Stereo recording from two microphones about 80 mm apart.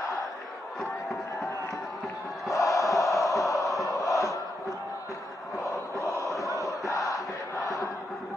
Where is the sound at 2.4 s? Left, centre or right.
Left.